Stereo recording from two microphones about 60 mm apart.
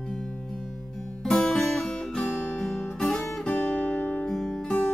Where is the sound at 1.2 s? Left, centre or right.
Centre.